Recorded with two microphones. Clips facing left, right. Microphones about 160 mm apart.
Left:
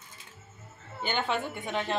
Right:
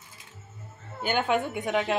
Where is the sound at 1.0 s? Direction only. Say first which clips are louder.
Right 5 dB; 5° right (ahead or behind).